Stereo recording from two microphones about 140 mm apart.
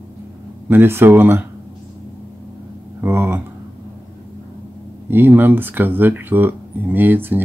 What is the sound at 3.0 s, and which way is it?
Speech, 15° right (ahead or behind).